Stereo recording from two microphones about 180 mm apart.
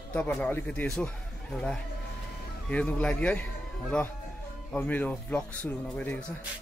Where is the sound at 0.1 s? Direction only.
10° left (ahead or behind).